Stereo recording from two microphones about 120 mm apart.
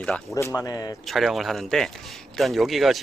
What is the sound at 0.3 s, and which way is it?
Speech, 25° left (ahead or behind).